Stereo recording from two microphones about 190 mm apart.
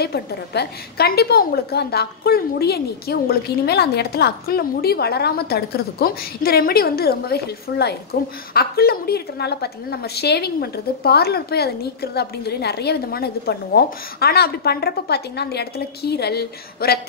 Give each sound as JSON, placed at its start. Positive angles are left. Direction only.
{"t": 0.0, "sound": "a woman's voice", "side_deg": 55}